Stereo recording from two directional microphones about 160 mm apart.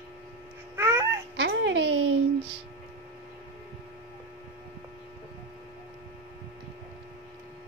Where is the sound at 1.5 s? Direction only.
90° right.